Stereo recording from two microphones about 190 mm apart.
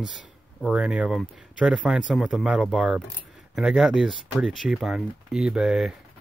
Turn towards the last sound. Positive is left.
turn(degrees=-5)  # may be behind; listen again after turning